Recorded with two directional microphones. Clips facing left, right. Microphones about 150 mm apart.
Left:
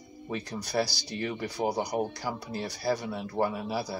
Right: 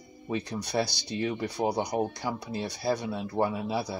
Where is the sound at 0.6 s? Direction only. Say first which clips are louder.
Even; 20° right (ahead or behind).